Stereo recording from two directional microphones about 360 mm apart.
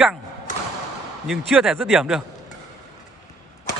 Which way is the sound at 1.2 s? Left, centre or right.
Centre.